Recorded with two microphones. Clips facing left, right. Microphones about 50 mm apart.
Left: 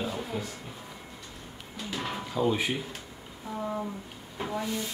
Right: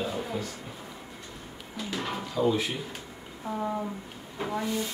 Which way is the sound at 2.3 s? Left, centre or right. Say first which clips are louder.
Right 1 dB; centre.